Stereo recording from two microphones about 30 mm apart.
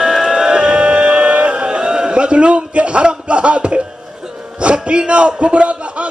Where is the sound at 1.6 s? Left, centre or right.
Right.